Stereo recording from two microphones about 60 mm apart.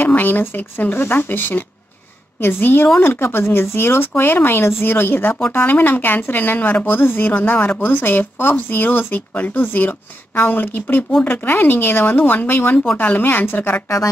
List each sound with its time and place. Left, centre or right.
0.0 s speech: left
7.0 s speech: left